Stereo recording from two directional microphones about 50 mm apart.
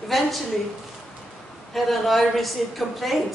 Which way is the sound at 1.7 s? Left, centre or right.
Centre.